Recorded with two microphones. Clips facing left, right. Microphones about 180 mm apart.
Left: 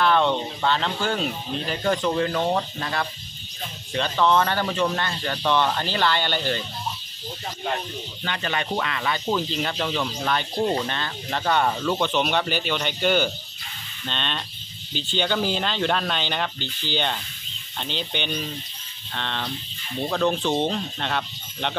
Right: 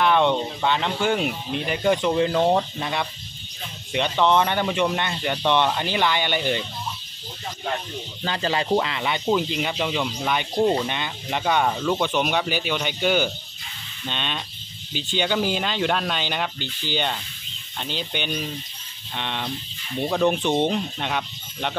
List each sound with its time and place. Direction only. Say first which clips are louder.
0.0 s speech: right 1 dB; 15° right (ahead or behind)
8.2 s speech: right 4 dB; 30° right (ahead or behind); by 21.7 s 5° right (ahead or behind)